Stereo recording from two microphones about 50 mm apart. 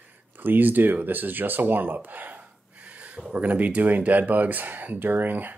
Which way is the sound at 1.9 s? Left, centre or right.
Right.